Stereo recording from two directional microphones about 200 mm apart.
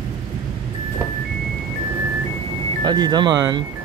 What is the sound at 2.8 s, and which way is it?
Speech, 20° right (ahead or behind).